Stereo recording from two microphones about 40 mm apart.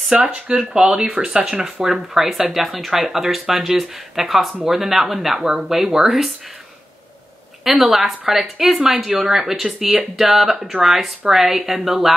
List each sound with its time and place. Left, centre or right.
0.2 s speech: right
1.1 s speech: centre
7.6 s speech: centre